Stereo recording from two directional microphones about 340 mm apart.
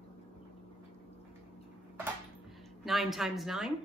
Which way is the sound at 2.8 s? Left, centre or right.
Centre.